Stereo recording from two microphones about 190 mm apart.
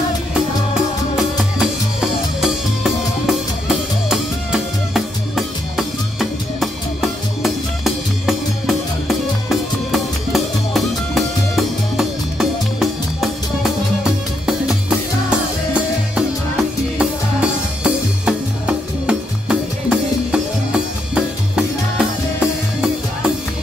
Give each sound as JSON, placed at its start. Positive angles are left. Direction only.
{"t": 1.1, "sound": "music", "side_deg": -5}